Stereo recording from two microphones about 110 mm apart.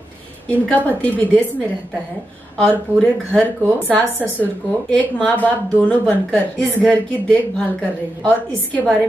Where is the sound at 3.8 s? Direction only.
15° left (ahead or behind).